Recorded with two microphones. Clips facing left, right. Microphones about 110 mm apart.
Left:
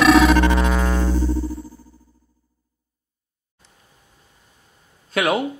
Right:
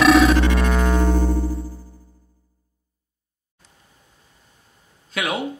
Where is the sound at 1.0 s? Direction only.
55° right (ahead or behind).